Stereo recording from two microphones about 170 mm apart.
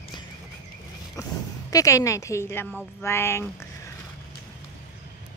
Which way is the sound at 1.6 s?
20° left (ahead or behind).